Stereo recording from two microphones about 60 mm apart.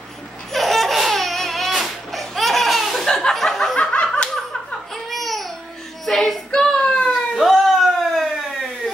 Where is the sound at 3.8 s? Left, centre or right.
Centre.